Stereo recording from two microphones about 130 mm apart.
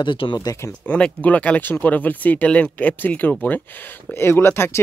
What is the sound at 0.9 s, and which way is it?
Speech, 10° left (ahead or behind).